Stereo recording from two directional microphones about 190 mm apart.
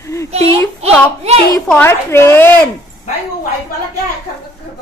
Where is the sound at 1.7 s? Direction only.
10° left (ahead or behind).